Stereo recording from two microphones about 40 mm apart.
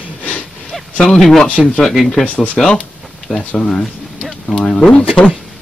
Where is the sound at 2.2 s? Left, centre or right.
Left.